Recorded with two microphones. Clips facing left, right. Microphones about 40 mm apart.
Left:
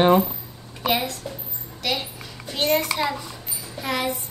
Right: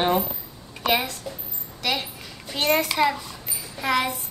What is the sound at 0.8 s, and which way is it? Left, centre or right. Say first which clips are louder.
A woman's voice: even; centre.